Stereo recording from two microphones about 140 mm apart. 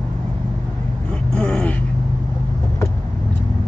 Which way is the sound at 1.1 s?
5° left (ahead or behind).